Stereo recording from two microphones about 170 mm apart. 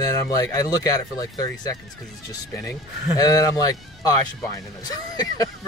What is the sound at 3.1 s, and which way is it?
Speech, 20° left (ahead or behind).